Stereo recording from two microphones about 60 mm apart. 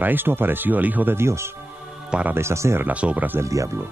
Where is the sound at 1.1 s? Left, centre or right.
Right.